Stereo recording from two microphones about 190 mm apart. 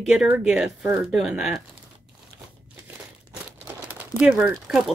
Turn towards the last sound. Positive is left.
turn(degrees=-5)  # may be behind; listen again after turning